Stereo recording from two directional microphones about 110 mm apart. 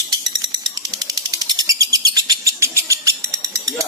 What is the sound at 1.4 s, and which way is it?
Bird, 35° right (ahead or behind).